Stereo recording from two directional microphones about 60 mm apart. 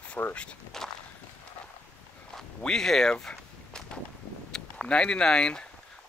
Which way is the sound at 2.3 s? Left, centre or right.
Centre.